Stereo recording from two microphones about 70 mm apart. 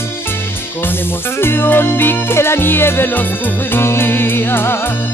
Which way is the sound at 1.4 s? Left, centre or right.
Left.